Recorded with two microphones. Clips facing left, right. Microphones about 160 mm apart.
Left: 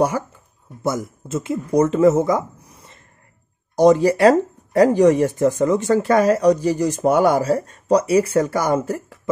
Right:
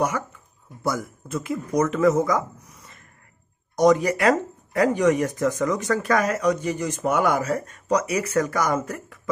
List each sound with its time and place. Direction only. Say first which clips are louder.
0.0 s speech: left 5 dB; 30° left (ahead or behind)